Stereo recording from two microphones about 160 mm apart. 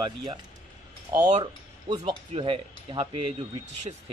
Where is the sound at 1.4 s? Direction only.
30° right (ahead or behind).